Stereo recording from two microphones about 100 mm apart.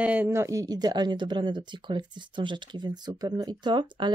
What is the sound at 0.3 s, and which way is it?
Speech, 30° right (ahead or behind).